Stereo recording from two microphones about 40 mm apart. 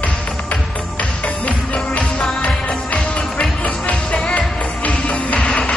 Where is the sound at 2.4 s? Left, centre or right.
Left.